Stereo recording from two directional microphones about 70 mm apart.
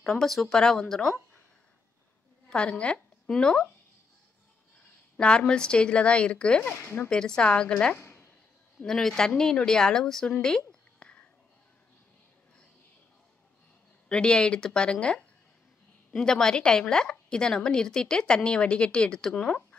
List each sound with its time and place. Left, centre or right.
0.0 s a woman's voice: centre
2.5 s a woman's voice: centre
5.1 s a woman's voice: centre
6.6 s speech: left
7.1 s a woman's voice: centre
7.9 s a sound: left
8.7 s a woman's voice: centre
11.0 s a sound: centre
14.0 s a woman's voice: centre